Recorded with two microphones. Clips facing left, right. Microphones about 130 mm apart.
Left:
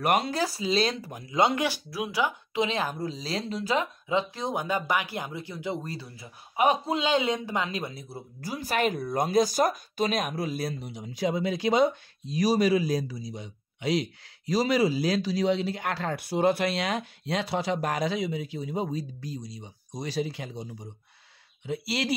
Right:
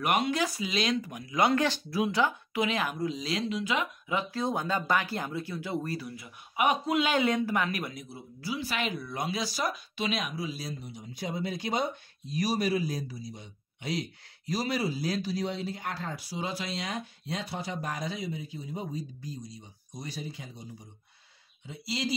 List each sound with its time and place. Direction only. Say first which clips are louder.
0.0 s speech: left 2 dB; 40° left (ahead or behind)
1.9 s speech: right 1 dB; 5° left (ahead or behind)
2.5 s speech: left 2 dB; 25° left (ahead or behind)
8.4 s speech: left 5 dB; 45° left (ahead or behind)
10.8 s speech: left 8 dB; 90° left
21.6 s speech: left 4 dB; 70° left (ahead or behind)